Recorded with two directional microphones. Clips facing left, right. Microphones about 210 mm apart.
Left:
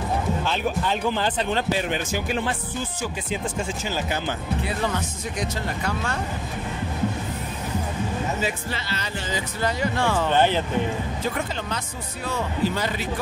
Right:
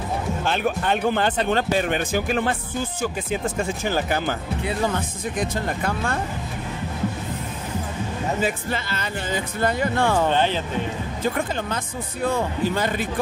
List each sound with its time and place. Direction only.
0.5 s speech: 55° right (ahead or behind)
5.4 s speech: 55° right (ahead or behind)
8.4 s speech: 50° right (ahead or behind)
12.3 s speech: 50° right (ahead or behind)